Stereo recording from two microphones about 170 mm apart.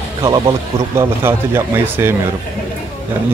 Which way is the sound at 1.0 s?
15° right (ahead or behind).